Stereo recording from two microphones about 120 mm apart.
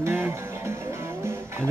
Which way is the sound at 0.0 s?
15° right (ahead or behind).